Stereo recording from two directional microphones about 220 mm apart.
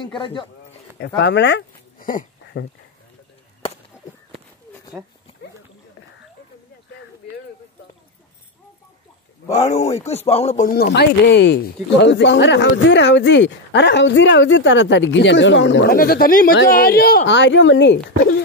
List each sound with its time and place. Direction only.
0.0 s music: 20° left (ahead or behind)
0.9 s speech: 50° left (ahead or behind)
10.0 s music: 30° left (ahead or behind)
10.7 s speech: 45° left (ahead or behind)